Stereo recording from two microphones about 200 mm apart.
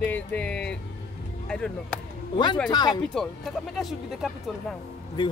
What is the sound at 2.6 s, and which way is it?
Speech, 20° left (ahead or behind).